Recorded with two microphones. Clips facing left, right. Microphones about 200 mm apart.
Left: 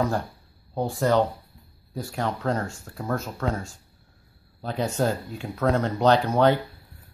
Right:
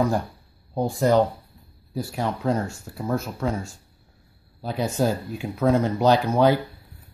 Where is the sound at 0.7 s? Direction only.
10° right (ahead or behind).